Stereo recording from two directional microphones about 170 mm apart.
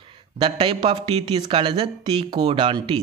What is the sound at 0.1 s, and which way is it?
Speech, 30° right (ahead or behind).